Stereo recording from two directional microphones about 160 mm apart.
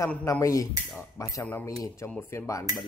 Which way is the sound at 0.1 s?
15° left (ahead or behind).